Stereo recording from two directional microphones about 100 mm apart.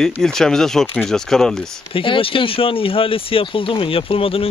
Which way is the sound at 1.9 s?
60° left (ahead or behind).